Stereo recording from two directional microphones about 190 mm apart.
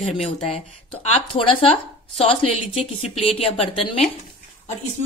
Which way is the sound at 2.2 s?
30° left (ahead or behind).